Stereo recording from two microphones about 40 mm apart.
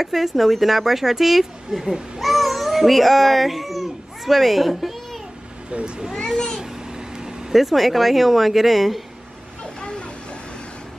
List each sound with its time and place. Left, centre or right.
0.0 s speech: centre
2.1 s a sound: centre
5.7 s speech: right
6.3 s vehicle: centre
6.6 s vehicle: centre
7.5 s speech: centre
9.6 s vehicle: left